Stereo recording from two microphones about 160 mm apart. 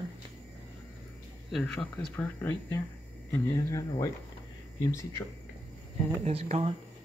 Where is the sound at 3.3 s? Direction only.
20° left (ahead or behind).